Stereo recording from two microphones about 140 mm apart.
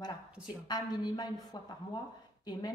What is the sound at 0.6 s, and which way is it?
Speech, 30° left (ahead or behind).